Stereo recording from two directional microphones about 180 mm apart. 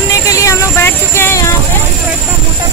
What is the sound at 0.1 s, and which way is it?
Vehicle, 15° left (ahead or behind).